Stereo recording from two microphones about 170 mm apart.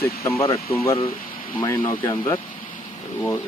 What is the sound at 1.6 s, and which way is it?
Speech, 20° left (ahead or behind).